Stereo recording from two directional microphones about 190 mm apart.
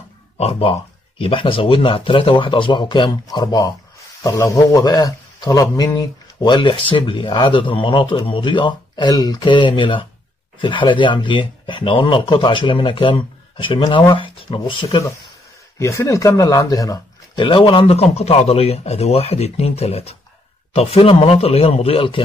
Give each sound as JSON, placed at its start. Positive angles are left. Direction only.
{"t": 0.4, "sound": "a man's voice", "side_deg": 30}